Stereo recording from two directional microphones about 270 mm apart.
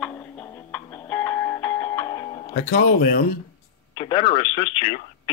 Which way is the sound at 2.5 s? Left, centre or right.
Left.